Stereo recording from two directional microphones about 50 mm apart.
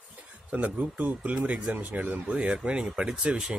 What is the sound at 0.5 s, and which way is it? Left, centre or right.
Speech, right.